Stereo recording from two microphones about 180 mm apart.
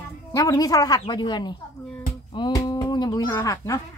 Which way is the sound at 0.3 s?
20° left (ahead or behind).